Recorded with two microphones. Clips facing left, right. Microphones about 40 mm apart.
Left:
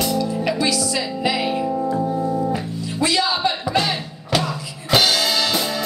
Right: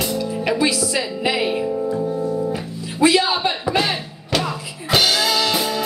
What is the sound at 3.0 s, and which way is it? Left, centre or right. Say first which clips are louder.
Music: right 4 dB; centre.